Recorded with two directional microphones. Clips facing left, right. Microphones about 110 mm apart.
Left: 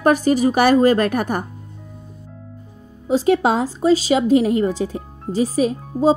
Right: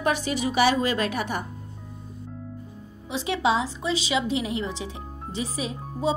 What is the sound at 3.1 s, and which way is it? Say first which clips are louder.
Speech: left 8 dB; 45° left (ahead or behind).